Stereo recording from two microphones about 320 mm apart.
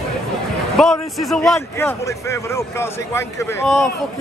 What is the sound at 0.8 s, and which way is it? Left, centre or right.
A man's voice, centre.